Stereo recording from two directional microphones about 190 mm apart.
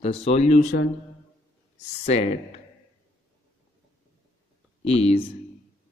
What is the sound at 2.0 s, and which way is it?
Speech, 35° left (ahead or behind).